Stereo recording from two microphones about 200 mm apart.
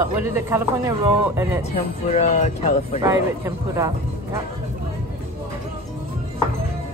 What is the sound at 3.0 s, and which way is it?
Speech, 15° right (ahead or behind).